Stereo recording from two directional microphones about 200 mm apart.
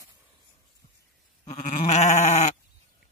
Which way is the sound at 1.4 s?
40° left (ahead or behind).